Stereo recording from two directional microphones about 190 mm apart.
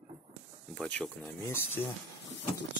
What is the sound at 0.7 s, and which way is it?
Speech, 5° left (ahead or behind).